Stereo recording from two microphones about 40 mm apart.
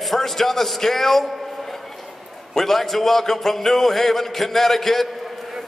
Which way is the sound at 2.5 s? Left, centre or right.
Centre.